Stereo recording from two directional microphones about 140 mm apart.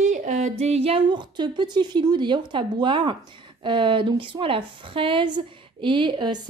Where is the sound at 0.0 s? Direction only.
60° right (ahead or behind).